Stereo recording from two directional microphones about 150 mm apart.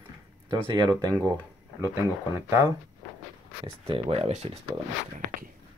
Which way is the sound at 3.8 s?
40° right (ahead or behind).